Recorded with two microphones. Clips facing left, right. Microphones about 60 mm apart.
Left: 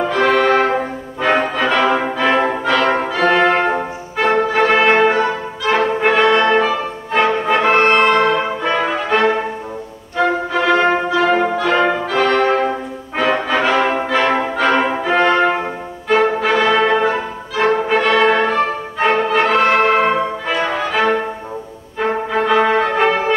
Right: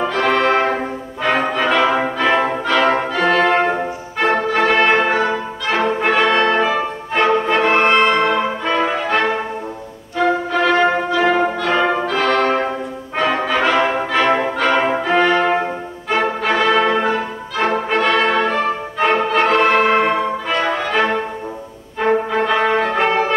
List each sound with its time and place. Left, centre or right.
0.1 s music: centre
3.3 s music: centre
8.2 s brass instrument: centre
10.1 s music: centre
10.7 s brass instrument: centre
11.1 s brass instrument: centre
12.1 s music: centre
13.1 s brass instrument: centre
16.1 s music: centre
17.8 s brass instrument: centre
18.9 s music: centre